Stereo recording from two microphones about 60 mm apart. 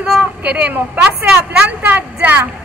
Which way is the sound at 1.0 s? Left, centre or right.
Centre.